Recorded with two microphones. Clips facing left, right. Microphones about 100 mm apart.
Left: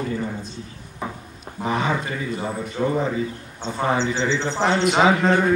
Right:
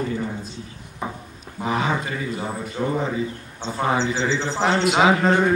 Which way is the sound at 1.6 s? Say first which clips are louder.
Even; centre (ahead or behind).